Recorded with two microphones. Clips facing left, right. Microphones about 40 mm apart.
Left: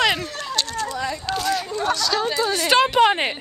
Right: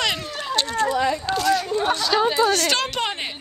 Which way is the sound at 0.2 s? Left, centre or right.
Centre.